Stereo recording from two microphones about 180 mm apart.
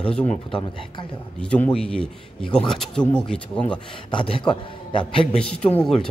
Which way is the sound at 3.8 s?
30° left (ahead or behind).